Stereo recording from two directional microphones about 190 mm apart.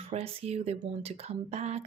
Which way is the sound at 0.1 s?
35° right (ahead or behind).